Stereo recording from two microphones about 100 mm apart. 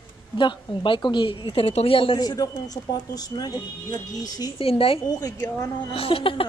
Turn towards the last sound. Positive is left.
turn(degrees=60)  # may be behind; listen again after turning